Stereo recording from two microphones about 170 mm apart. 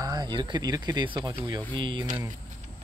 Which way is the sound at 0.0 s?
25° right (ahead or behind).